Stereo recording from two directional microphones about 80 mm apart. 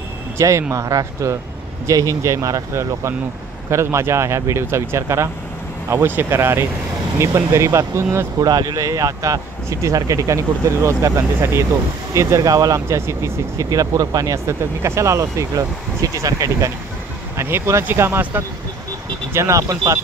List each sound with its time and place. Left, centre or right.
0.4 s speech: right
8.4 s speech: right
14.5 s speech: right
19.3 s speech: right